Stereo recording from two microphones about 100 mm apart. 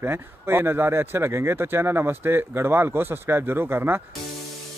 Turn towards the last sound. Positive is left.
turn(degrees=-20)  # may be behind; listen again after turning